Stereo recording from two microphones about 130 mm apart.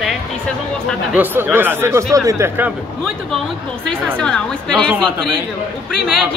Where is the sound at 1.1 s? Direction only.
10° right (ahead or behind).